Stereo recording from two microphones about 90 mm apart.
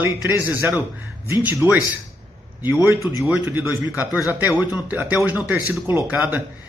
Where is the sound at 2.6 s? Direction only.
25° right (ahead or behind).